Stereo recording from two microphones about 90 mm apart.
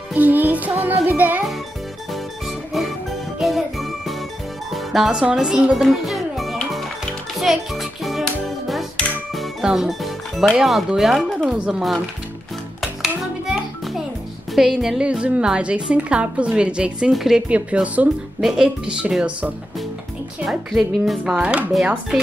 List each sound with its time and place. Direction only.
0.1 s music: 20° right (ahead or behind)
2.4 s music: centre (ahead or behind)
10.6 s speech: centre (ahead or behind)
12.8 s music: 5° right (ahead or behind)
14.5 s a woman's voice: 5° right (ahead or behind)
17.5 s a woman's voice: 15° right (ahead or behind)